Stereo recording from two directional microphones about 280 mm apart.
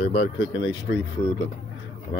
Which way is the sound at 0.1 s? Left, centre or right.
Centre.